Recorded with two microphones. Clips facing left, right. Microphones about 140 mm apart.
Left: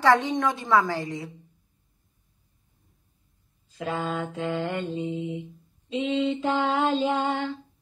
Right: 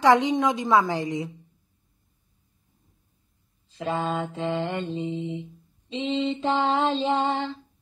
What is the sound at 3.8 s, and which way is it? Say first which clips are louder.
Mantra: right 2 dB; centre (ahead or behind).